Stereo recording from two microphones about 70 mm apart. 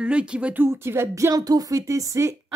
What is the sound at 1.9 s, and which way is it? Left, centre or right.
Speech, right.